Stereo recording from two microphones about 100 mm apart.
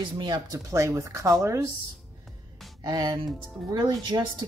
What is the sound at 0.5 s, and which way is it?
Speech, 30° right (ahead or behind).